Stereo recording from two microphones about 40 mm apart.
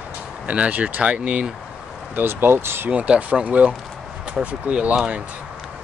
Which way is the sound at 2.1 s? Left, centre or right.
Right.